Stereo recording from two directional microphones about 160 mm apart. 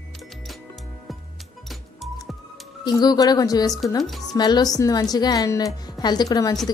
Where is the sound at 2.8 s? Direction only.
25° left (ahead or behind).